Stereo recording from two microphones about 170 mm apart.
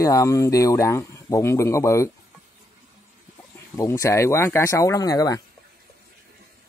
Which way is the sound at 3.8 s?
20° left (ahead or behind).